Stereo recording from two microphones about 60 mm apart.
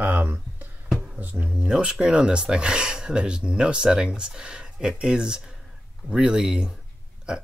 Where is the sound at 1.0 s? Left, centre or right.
Right.